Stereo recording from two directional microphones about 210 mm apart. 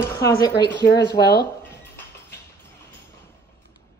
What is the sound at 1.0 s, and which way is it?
Speech, 50° left (ahead or behind).